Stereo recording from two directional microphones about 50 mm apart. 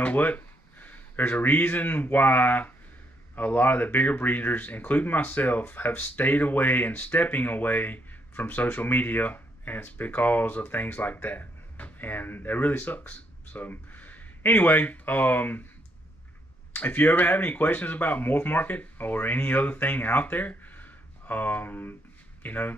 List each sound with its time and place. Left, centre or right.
0.0 s speech: left
16.7 s speech: left